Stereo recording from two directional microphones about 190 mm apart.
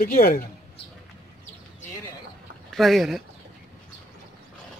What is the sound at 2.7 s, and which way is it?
Speech, centre (ahead or behind).